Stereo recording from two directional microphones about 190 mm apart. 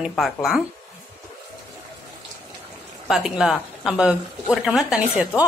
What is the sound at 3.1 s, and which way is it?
A woman's voice, centre (ahead or behind).